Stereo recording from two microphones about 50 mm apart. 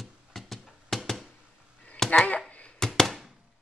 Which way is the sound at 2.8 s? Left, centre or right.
Centre.